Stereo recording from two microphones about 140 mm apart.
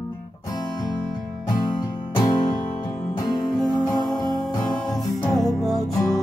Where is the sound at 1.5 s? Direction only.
30° left (ahead or behind).